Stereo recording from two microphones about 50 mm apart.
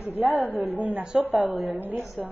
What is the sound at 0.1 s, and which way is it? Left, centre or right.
A woman's voice, right.